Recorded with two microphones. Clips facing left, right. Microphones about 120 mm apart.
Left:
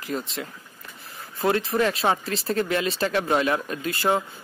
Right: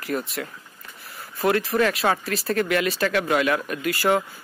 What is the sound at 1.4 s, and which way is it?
Speech, 25° left (ahead or behind).